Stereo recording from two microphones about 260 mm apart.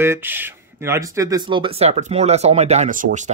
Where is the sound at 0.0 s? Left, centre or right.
Centre.